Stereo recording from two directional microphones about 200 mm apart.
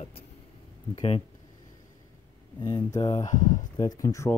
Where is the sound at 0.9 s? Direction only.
25° left (ahead or behind).